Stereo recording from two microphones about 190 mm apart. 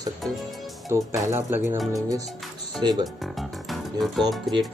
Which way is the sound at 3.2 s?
Centre (ahead or behind).